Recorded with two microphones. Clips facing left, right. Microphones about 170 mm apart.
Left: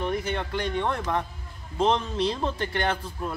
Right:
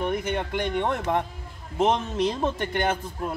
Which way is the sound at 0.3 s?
15° right (ahead or behind).